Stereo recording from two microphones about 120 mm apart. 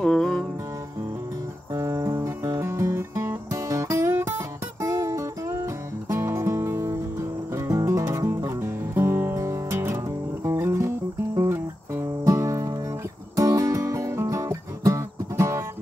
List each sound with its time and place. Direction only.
0.0 s music: 5° left (ahead or behind)
1.7 s music: 25° right (ahead or behind)